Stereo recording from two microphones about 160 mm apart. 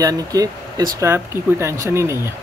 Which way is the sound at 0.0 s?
20° right (ahead or behind).